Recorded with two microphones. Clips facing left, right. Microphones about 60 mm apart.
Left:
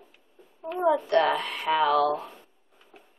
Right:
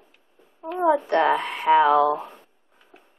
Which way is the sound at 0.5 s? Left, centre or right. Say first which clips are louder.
Right 3 dB; centre.